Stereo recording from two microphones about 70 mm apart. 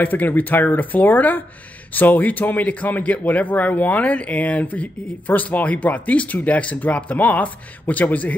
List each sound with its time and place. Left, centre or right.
0.0 s a man's voice: left